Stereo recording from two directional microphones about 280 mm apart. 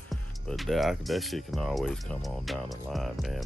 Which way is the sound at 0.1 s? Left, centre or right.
Centre.